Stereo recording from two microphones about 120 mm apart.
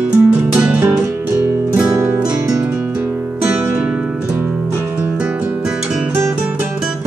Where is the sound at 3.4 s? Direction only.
15° right (ahead or behind).